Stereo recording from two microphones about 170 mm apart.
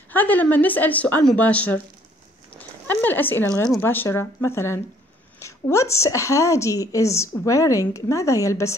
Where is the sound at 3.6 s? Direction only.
15° left (ahead or behind).